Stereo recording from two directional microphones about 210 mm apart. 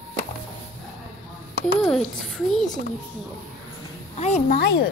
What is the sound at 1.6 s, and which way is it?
A child's voice, centre (ahead or behind).